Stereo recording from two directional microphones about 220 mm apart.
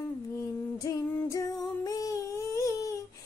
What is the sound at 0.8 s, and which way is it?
Music, 15° left (ahead or behind).